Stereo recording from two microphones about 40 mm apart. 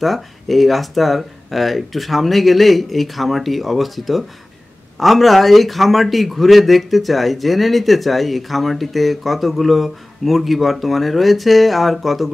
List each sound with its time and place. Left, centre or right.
0.0 s a man's voice: centre